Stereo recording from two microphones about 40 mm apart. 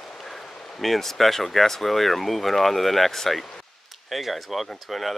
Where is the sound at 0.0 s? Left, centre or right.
Centre.